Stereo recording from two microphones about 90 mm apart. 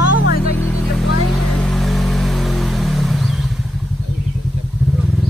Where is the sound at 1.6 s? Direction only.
Centre (ahead or behind).